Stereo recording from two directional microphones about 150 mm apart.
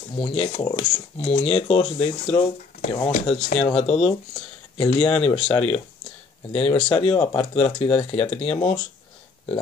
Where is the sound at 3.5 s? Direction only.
35° left (ahead or behind).